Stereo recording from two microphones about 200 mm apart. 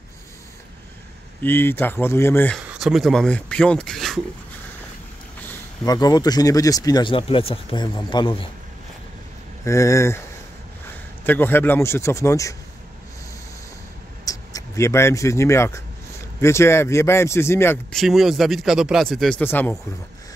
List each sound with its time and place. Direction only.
1.4 s a man's voice: 10° left (ahead or behind)
2.6 s beatboxing: 5° right (ahead or behind)
5.9 s speech: 20° left (ahead or behind)
9.7 s a man's voice: 15° left (ahead or behind)
11.2 s a man's voice: 10° left (ahead or behind)
14.2 s a man's voice: 15° left (ahead or behind)
17.9 s speech: centre (ahead or behind)